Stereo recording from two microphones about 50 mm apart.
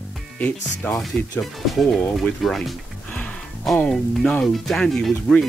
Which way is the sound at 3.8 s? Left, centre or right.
Centre.